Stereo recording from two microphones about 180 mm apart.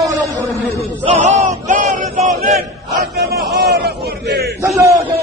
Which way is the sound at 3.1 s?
65° right (ahead or behind).